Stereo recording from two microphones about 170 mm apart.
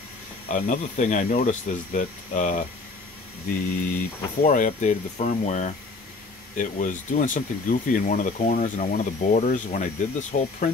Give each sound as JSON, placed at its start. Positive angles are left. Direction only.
{"t": 0.5, "sound": "speech", "side_deg": 50}
{"t": 3.9, "sound": "speech", "side_deg": 50}